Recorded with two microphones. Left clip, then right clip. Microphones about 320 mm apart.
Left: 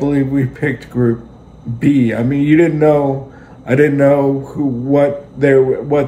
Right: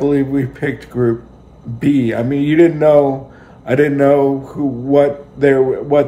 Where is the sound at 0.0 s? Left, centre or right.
Centre.